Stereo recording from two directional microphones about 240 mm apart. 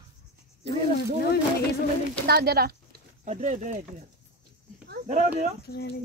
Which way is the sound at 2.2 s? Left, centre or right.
Right.